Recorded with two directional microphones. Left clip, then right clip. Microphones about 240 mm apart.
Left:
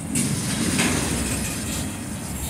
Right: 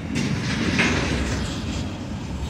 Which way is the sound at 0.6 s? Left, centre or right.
Left.